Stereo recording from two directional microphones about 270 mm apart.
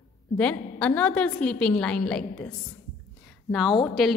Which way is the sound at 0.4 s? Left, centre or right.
Centre.